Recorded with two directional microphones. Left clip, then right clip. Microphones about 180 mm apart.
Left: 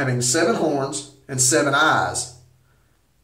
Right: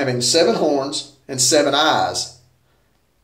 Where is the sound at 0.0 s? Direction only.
10° right (ahead or behind).